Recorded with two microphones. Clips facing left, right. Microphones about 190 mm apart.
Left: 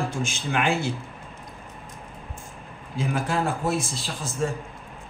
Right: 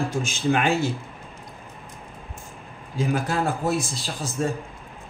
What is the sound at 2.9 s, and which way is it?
Speech, 40° right (ahead or behind).